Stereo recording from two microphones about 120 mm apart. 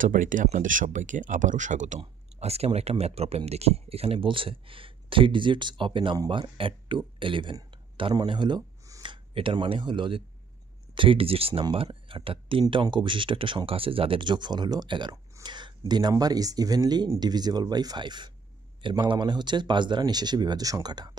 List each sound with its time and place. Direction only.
0.0 s speech: 90° right
2.0 s speech: 60° right (ahead or behind)
6.1 s speech: 35° right (ahead or behind)
7.7 s a sound: 40° right (ahead or behind)
9.0 s speech: 45° right (ahead or behind)
15.4 s a sound: 40° right (ahead or behind)
15.8 s speech: 35° right (ahead or behind)